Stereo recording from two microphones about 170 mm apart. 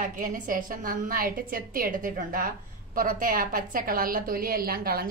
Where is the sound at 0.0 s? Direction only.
50° right (ahead or behind).